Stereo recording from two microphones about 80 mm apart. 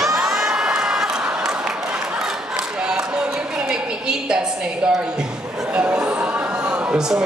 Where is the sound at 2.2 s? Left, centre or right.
Centre.